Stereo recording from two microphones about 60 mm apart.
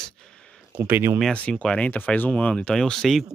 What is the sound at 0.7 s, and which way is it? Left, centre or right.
Speech, right.